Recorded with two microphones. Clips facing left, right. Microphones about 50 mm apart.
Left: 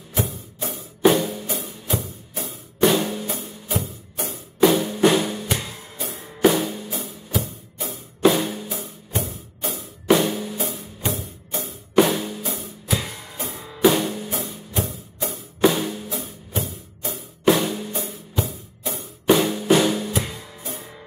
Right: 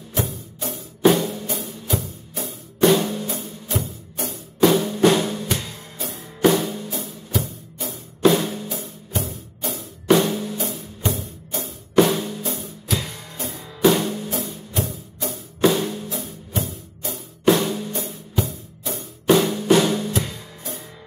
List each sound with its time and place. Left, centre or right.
0.1 s music: centre
4.3 s drum: centre
7.1 s music: centre
11.0 s music: centre
11.6 s music: centre